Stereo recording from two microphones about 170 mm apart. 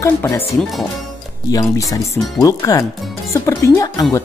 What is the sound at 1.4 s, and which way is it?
Speech, 20° left (ahead or behind).